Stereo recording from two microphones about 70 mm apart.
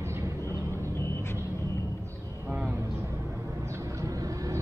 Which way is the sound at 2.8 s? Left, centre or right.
Right.